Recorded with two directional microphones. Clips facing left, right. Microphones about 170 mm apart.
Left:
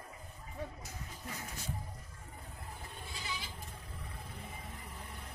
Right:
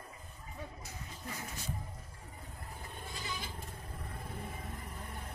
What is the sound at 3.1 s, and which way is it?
Goat, 45° right (ahead or behind).